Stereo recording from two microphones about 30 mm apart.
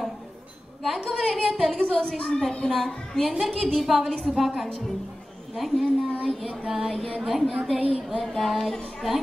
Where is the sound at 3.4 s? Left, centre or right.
Centre.